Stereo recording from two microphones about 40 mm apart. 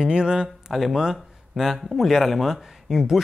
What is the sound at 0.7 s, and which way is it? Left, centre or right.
Speech, centre.